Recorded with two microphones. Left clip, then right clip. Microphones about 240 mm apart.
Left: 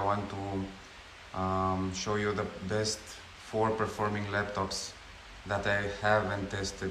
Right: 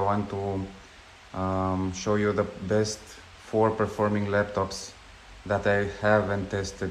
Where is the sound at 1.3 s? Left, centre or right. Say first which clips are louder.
Right 2 dB; centre.